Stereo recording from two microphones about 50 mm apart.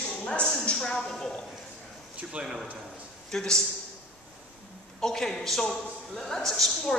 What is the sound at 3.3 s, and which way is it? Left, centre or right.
Speech, centre.